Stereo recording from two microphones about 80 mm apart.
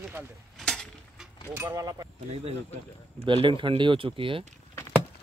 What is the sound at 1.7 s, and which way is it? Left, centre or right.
Speech, right.